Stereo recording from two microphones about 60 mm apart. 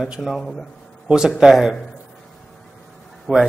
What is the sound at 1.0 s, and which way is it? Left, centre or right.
Speech, centre.